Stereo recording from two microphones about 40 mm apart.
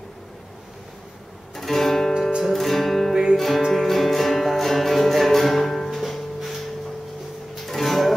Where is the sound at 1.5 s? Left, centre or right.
Centre.